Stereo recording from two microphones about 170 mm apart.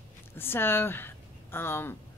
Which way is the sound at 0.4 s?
15° left (ahead or behind).